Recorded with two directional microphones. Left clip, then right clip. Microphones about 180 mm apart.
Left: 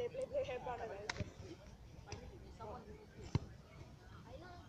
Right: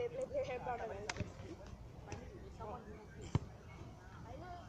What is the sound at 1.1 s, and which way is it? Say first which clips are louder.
Speech: right 1 dB; 30° right (ahead or behind).